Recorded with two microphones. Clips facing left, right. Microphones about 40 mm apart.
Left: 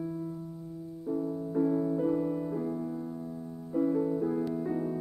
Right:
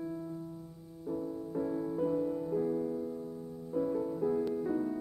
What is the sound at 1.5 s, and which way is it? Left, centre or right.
Music, centre.